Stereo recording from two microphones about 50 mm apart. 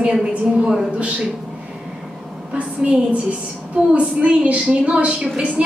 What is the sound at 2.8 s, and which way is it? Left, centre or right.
A woman's voice, right.